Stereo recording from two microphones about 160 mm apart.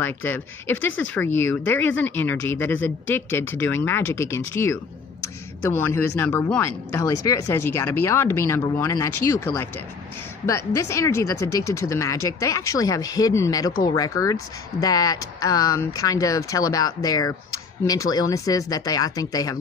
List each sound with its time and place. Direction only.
0.0 s speech: 15° left (ahead or behind)